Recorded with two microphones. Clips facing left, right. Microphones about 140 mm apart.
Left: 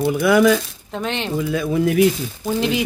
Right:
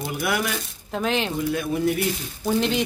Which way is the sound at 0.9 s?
Centre (ahead or behind).